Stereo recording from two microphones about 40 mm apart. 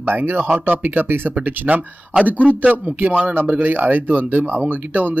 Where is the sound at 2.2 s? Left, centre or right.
Right.